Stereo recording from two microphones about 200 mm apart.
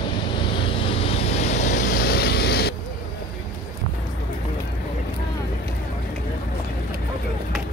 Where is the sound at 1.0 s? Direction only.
30° left (ahead or behind).